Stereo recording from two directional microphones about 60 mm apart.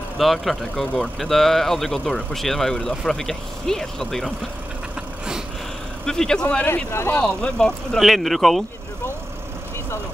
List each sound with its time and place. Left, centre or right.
0.2 s speech: centre
6.0 s speech: centre
6.6 s speech: left
7.2 s speech: centre
8.0 s speech: centre